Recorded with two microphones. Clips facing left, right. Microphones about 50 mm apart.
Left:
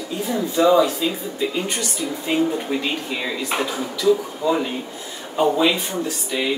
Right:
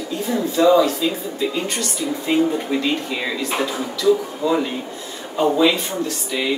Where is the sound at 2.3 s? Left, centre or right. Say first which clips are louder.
Right 2 dB; centre.